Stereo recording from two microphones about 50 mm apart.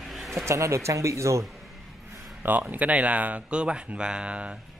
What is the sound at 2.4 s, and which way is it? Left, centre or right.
Speech, right.